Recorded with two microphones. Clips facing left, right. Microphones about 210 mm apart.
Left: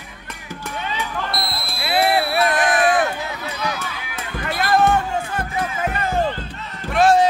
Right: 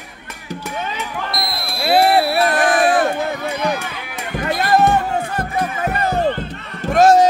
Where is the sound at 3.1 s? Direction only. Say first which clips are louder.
Right 7 dB; 50° right (ahead or behind).